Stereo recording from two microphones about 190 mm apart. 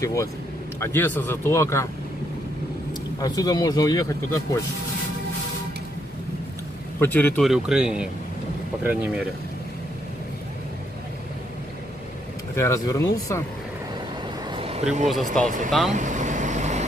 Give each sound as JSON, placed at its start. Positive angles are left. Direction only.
{"t": 0.0, "sound": "speech", "side_deg": 15}
{"t": 3.2, "sound": "speech", "side_deg": 20}
{"t": 7.0, "sound": "speech", "side_deg": 10}
{"t": 12.5, "sound": "speech", "side_deg": 15}
{"t": 14.5, "sound": "a sound", "side_deg": -30}
{"t": 15.9, "sound": "vehicle", "side_deg": -40}